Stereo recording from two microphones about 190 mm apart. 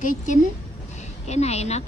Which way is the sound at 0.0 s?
45° left (ahead or behind).